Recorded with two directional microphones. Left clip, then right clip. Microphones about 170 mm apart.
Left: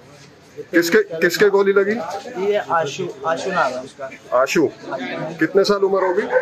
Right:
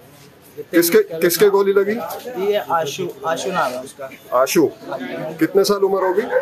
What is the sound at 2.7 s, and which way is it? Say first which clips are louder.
Speech: even; 25° right (ahead or behind).